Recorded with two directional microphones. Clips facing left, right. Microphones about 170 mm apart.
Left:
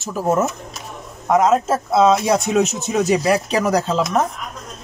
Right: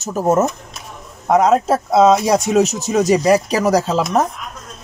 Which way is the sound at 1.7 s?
35° right (ahead or behind).